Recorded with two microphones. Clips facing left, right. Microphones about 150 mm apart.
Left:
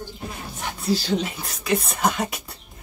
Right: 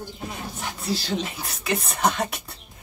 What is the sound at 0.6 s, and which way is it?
Speech, centre (ahead or behind).